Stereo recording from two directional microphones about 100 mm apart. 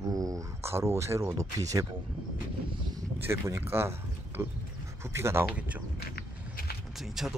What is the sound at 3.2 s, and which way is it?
Speech, 30° right (ahead or behind).